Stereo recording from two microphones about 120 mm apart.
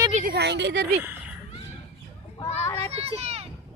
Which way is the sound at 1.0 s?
15° right (ahead or behind).